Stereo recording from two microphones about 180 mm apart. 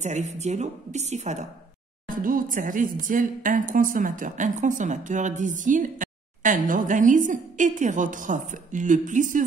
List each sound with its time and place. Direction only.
0.0 s a woman's voice: 40° right (ahead or behind)
2.0 s speech: 50° right (ahead or behind)